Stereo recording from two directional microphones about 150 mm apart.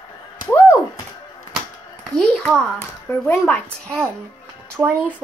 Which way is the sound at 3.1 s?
10° left (ahead or behind).